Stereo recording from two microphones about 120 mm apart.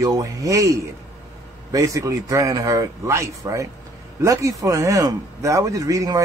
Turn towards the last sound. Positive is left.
turn(degrees=-30)  # may be behind; listen again after turning